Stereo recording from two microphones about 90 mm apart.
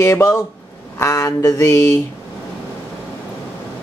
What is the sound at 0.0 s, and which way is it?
Speech, 35° left (ahead or behind).